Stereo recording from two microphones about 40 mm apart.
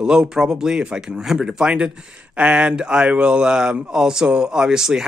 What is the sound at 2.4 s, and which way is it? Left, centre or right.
Speech, right.